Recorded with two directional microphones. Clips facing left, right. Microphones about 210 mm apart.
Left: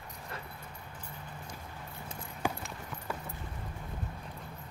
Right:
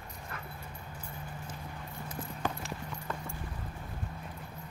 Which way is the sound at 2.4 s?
10° left (ahead or behind).